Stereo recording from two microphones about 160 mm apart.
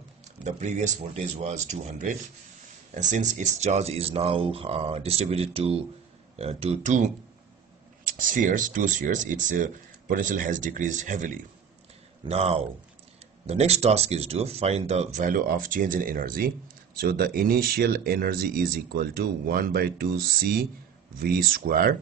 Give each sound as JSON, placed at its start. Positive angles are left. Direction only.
{"t": 0.2, "sound": "speech", "side_deg": -45}
{"t": 8.0, "sound": "speech", "side_deg": -60}
{"t": 12.3, "sound": "speech", "side_deg": -40}